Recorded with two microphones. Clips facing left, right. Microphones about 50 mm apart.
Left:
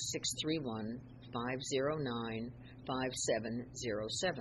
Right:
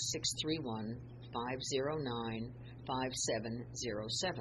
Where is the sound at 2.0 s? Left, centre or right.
Left.